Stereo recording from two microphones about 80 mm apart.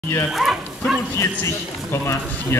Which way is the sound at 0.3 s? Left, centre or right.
Centre.